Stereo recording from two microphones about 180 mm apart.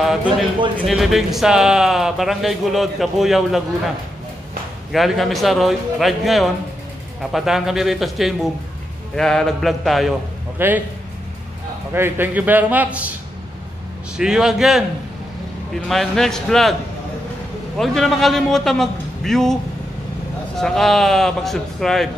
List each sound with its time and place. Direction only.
0.0 s speech: 5° right (ahead or behind)
4.9 s speech: centre (ahead or behind)
10.6 s a man's voice: 10° right (ahead or behind)
11.9 s a man's voice: 10° right (ahead or behind)
14.1 s speech: 5° right (ahead or behind)
15.9 s speech: centre (ahead or behind)
17.7 s speech: centre (ahead or behind)